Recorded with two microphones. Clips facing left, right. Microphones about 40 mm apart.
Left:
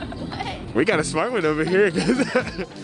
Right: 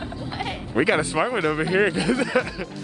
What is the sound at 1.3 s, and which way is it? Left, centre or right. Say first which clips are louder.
Turkey: left 2 dB; centre.